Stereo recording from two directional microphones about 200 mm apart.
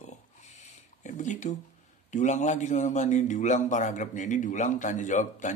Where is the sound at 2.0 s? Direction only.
35° left (ahead or behind).